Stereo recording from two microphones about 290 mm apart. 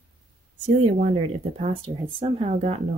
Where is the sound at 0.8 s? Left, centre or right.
Right.